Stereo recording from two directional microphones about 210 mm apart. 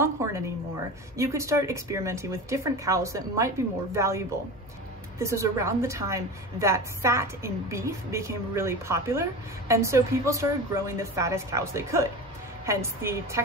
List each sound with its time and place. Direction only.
0.0 s a woman's voice: 15° right (ahead or behind)
5.2 s a woman's voice: 15° right (ahead or behind)